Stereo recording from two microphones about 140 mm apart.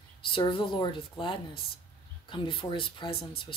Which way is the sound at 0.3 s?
40° left (ahead or behind).